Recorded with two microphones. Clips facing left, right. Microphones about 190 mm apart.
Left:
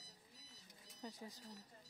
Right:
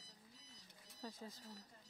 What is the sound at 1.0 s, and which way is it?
Speech, 15° left (ahead or behind).